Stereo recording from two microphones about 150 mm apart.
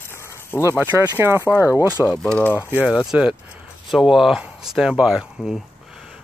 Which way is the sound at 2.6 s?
10° right (ahead or behind).